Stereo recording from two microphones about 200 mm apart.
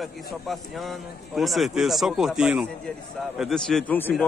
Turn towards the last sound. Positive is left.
turn(degrees=10)  # may be behind; listen again after turning